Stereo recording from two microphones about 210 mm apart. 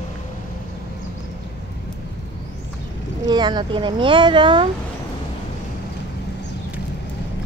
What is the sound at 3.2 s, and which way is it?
Speech, 20° right (ahead or behind).